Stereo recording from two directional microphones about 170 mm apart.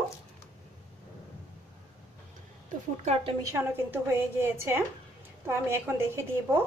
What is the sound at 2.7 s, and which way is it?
Speech, 40° right (ahead or behind).